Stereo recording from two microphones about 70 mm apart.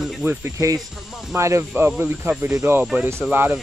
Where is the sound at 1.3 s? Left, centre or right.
Right.